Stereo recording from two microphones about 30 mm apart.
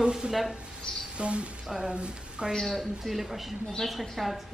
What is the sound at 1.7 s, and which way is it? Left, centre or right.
Speech, right.